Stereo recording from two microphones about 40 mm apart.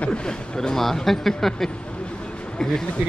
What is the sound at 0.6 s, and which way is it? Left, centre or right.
Speech, centre.